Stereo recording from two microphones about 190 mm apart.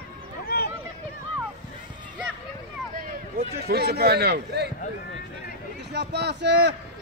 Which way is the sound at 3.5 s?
55° right (ahead or behind).